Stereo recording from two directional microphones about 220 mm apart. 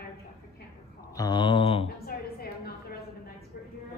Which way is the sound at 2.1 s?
45° left (ahead or behind).